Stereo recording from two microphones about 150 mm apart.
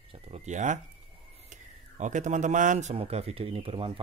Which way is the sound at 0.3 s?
55° right (ahead or behind).